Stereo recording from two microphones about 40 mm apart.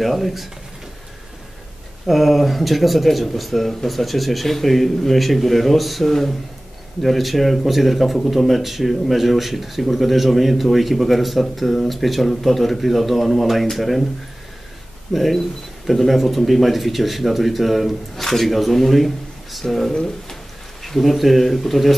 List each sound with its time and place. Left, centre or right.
0.0 s speech: centre
2.0 s speech: centre
15.1 s speech: centre
19.9 s speech: centre
20.8 s speech: centre